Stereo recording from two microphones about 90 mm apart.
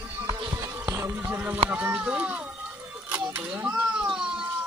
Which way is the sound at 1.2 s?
20° right (ahead or behind).